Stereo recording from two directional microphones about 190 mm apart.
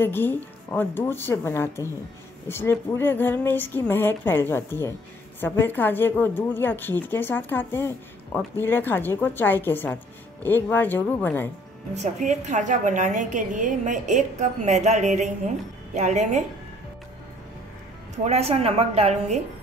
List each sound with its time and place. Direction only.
0.0 s a woman's voice: 10° left (ahead or behind)
11.9 s a woman's voice: 40° right (ahead or behind)
18.1 s a woman's voice: 35° right (ahead or behind)